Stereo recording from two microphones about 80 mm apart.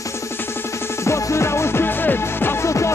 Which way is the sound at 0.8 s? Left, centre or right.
Left.